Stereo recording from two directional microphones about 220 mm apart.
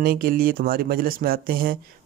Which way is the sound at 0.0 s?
40° right (ahead or behind).